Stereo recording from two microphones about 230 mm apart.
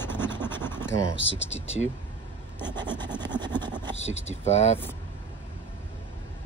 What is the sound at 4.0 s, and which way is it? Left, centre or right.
Speech, left.